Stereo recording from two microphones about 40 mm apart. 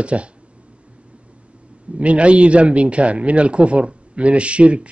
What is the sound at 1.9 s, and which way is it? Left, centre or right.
A man's voice, right.